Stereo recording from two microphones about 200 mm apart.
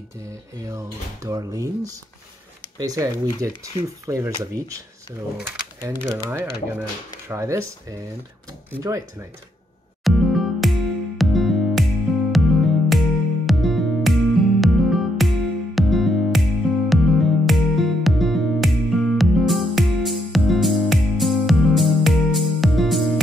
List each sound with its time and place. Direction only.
0.7 s speech: 15° right (ahead or behind)
2.8 s speech: 15° right (ahead or behind)
8.7 s speech: 15° right (ahead or behind)
10.0 s music: centre (ahead or behind)